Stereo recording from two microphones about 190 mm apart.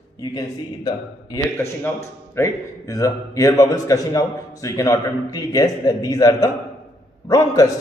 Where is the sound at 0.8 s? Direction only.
15° left (ahead or behind).